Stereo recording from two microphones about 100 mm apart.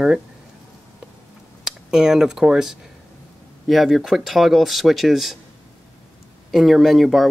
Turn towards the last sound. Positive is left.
turn(degrees=0)  # may be behind; listen again after turning